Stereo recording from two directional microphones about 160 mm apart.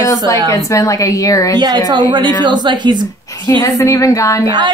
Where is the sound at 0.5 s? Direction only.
20° left (ahead or behind).